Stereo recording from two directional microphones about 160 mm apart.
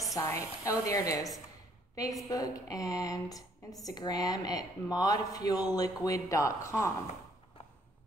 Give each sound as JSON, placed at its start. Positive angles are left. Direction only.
{"t": 0.1, "sound": "speech", "side_deg": 20}